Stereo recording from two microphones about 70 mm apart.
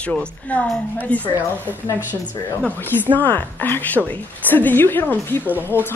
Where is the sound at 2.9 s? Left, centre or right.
Left.